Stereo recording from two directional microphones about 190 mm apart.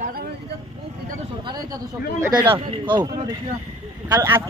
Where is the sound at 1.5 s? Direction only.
20° right (ahead or behind).